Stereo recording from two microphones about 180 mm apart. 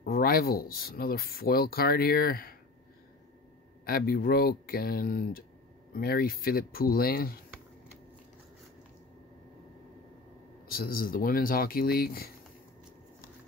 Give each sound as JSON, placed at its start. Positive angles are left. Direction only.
{"t": 0.0, "sound": "speech", "side_deg": 55}
{"t": 3.8, "sound": "speech", "side_deg": 55}
{"t": 10.7, "sound": "speech", "side_deg": 55}